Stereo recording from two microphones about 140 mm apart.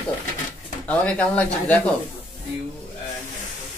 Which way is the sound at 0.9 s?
10° left (ahead or behind).